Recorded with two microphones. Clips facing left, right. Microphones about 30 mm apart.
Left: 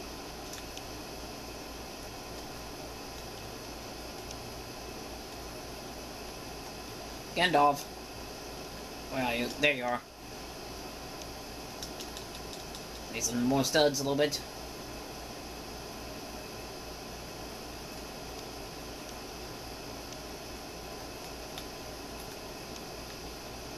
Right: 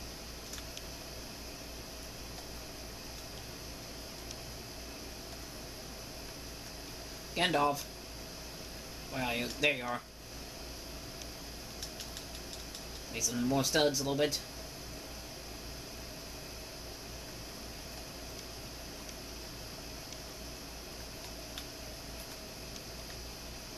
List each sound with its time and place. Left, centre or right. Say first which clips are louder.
7.3 s speech: left 5 dB; centre
9.1 s speech: left 3 dB; centre
13.1 s speech: left 3 dB; centre